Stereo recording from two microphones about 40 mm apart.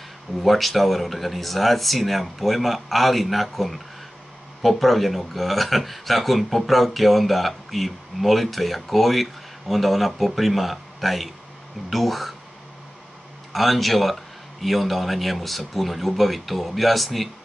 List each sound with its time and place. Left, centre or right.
0.4 s speech: centre
13.5 s speech: centre